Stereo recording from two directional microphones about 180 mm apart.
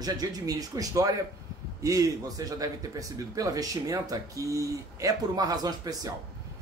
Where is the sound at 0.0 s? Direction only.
20° right (ahead or behind).